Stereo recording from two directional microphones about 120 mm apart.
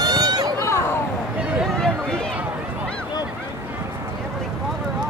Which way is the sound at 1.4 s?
10° right (ahead or behind).